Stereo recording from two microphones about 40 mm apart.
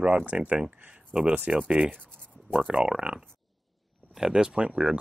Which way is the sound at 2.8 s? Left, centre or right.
Centre.